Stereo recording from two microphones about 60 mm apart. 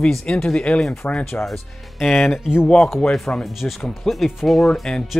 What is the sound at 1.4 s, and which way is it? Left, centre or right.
Speech, centre.